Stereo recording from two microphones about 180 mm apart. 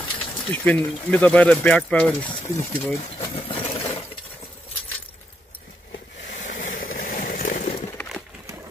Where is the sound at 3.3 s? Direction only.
30° left (ahead or behind).